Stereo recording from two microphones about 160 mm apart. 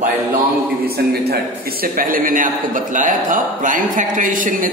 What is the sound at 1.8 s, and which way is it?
A man's voice, 60° right (ahead or behind).